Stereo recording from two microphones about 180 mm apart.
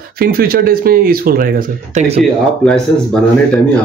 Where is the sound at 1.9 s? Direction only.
35° right (ahead or behind).